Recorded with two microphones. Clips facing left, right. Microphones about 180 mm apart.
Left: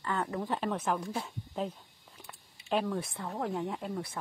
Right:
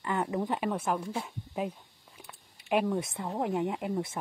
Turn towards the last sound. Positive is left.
turn(degrees=-20)  # may be behind; listen again after turning